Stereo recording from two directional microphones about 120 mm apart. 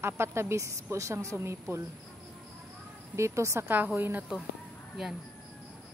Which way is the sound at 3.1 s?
25° right (ahead or behind).